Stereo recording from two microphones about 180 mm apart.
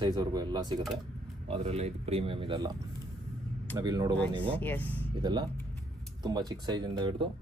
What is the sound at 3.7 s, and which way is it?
Speech, 20° right (ahead or behind).